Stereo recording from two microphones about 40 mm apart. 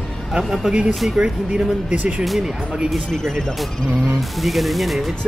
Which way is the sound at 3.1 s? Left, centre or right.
Centre.